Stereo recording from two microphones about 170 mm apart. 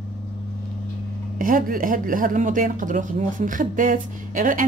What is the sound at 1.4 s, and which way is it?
Speech, 55° right (ahead or behind).